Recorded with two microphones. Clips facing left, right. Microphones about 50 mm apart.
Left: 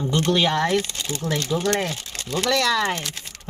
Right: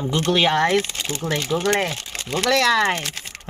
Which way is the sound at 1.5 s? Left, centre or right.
Right.